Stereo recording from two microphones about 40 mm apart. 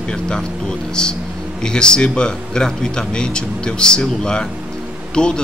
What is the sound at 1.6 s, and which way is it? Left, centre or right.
Speech, centre.